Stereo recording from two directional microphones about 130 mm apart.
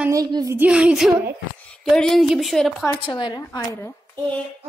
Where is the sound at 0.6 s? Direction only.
10° right (ahead or behind).